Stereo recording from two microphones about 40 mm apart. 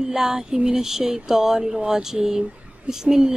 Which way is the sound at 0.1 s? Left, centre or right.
Centre.